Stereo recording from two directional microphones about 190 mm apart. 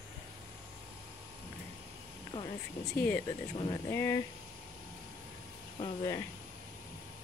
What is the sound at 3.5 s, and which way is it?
Speech, 25° left (ahead or behind).